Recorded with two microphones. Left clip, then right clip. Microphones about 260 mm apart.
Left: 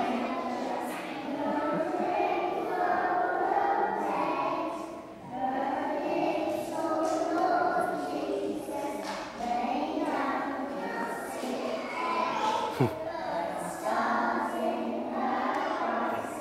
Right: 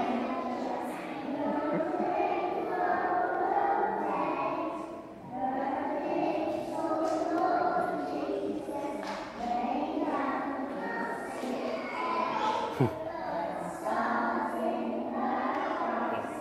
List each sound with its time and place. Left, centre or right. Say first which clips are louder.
1.5 s music: left 2 dB; centre
2.8 s choir: left 1 dB; centre
7.0 s a sound: left 2 dB; centre
9.7 s child singing: left 1 dB; centre
12.0 s music: left 1 dB; centre
13.8 s music: left 2 dB; centre
15.2 s crowd: left 2 dB; centre